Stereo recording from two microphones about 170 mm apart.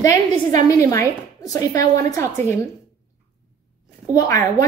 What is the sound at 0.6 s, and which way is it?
A woman's voice, 15° left (ahead or behind).